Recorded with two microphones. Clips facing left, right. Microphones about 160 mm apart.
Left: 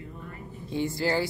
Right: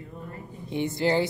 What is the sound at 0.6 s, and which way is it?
Speech, 20° right (ahead or behind).